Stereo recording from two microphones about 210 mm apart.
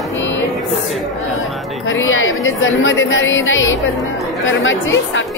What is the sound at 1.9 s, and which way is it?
A woman's voice, 70° left (ahead or behind).